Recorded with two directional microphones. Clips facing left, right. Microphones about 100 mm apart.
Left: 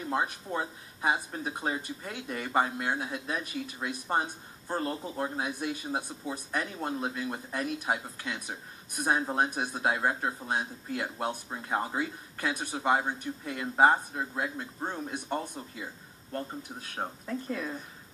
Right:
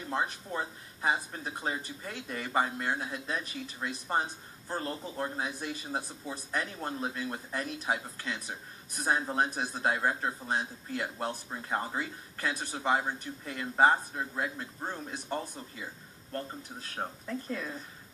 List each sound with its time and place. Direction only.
0.1 s speech: 10° left (ahead or behind)